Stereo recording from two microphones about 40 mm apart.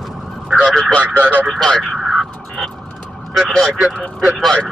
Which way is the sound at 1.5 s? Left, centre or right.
Centre.